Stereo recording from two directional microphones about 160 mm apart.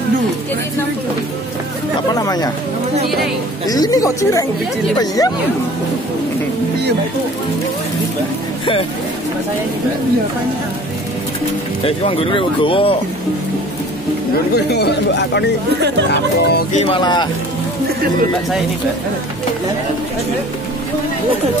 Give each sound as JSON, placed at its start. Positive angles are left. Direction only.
{"t": 2.1, "sound": "chatter", "side_deg": 25}
{"t": 3.6, "sound": "speech", "side_deg": 25}
{"t": 11.8, "sound": "speech", "side_deg": 35}
{"t": 14.5, "sound": "speech", "side_deg": 90}
{"t": 16.7, "sound": "speech", "side_deg": 35}